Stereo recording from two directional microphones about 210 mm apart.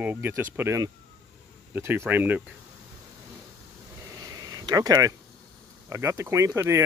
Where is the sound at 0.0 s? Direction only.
10° right (ahead or behind).